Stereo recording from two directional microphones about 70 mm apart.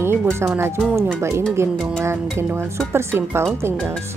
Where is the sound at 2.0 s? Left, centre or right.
Right.